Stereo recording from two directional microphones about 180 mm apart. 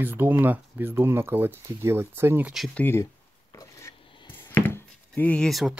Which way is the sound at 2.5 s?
5° left (ahead or behind).